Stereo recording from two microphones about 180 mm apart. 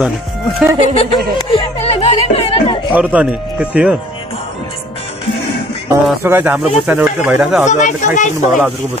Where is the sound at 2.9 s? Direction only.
10° right (ahead or behind).